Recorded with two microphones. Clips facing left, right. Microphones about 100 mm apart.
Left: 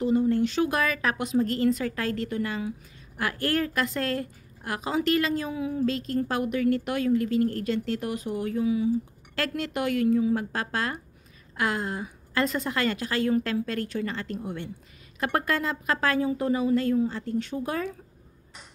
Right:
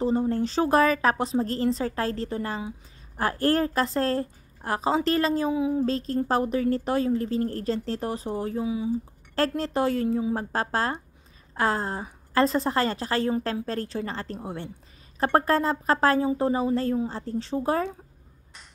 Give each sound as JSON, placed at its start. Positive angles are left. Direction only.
{"t": 0.0, "sound": "a woman's voice", "side_deg": -35}
{"t": 5.5, "sound": "a woman's voice", "side_deg": -20}
{"t": 5.9, "sound": "a woman's voice", "side_deg": -35}
{"t": 9.3, "sound": "a woman's voice", "side_deg": -35}